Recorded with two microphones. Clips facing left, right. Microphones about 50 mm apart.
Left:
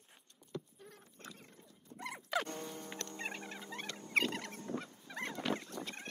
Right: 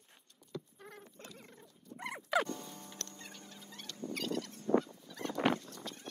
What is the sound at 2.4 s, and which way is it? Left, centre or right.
Music, left.